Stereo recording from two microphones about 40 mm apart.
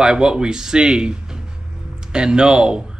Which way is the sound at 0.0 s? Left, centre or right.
Centre.